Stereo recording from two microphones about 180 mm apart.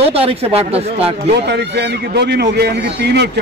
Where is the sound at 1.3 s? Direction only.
70° right (ahead or behind).